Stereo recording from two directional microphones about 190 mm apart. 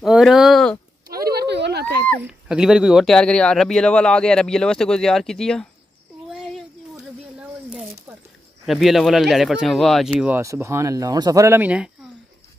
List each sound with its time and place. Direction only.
0.0 s speech: centre (ahead or behind)
1.0 s a sound: 50° right (ahead or behind)
2.2 s speech: 5° right (ahead or behind)
6.3 s a sound: centre (ahead or behind)
8.6 s speech: centre (ahead or behind)
10.1 s speech: 10° right (ahead or behind)